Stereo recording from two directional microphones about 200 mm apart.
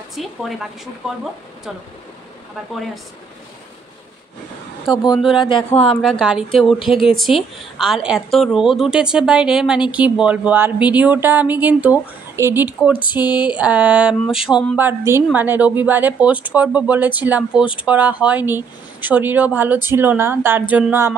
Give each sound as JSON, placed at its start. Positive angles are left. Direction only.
{"t": 0.1, "sound": "a woman's voice", "side_deg": 0}
{"t": 4.9, "sound": "speech", "side_deg": 20}
{"t": 5.2, "sound": "a woman's voice", "side_deg": 0}